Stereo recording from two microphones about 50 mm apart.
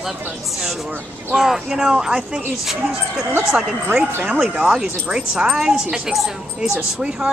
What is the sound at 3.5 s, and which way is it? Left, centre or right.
Speech, centre.